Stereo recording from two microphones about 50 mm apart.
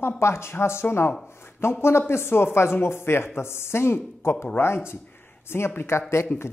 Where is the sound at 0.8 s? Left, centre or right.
Left.